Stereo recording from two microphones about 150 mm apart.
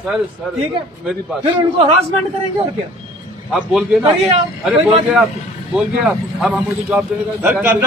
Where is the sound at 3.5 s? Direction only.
Centre (ahead or behind).